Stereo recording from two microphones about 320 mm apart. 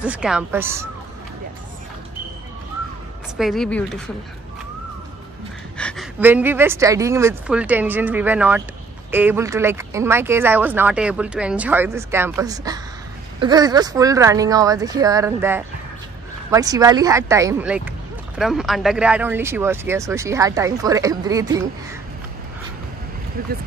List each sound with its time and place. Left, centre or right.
0.0 s speech: centre
3.3 s speech: centre
5.8 s speech: centre